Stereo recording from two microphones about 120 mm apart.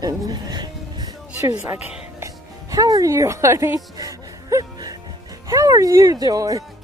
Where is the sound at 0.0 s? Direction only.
35° right (ahead or behind).